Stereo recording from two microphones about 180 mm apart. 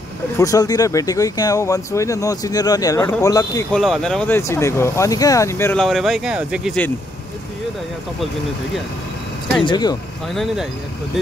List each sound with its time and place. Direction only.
0.4 s speech: 20° left (ahead or behind)
3.7 s speech: centre (ahead or behind)
5.8 s speech: centre (ahead or behind)
9.6 s speech: 25° left (ahead or behind)
10.2 s speech: centre (ahead or behind)